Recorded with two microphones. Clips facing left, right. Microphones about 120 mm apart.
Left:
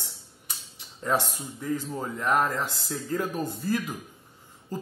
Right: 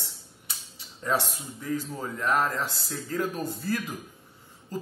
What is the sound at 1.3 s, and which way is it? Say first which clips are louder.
A man's voice: left 1 dB; 15° left (ahead or behind).